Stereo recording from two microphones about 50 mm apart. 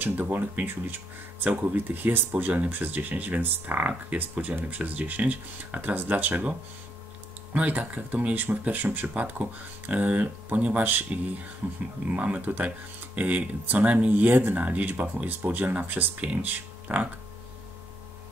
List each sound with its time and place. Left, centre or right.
0.0 s speech: right
7.5 s speech: right
12.1 s speech: right